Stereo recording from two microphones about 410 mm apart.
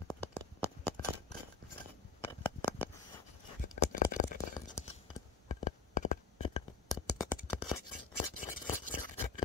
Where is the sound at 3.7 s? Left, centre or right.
Centre.